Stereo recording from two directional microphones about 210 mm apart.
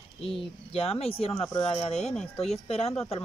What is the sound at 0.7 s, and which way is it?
Speech, 30° left (ahead or behind).